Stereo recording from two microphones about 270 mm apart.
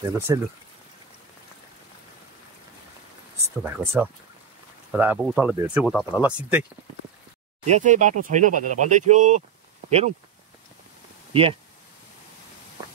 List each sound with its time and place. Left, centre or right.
0.3 s speech: centre
3.6 s speech: centre
7.6 s speech: right